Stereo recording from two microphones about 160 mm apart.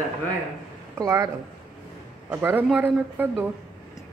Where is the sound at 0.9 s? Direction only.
20° right (ahead or behind).